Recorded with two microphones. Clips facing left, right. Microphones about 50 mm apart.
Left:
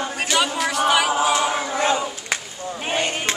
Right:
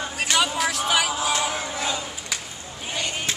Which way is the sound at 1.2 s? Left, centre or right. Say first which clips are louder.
Left 5 dB; left.